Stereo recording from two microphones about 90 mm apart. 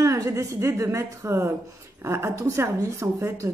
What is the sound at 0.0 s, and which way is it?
A woman's voice, 35° right (ahead or behind).